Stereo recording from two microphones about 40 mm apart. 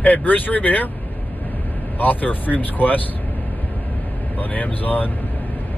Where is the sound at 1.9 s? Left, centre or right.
Left.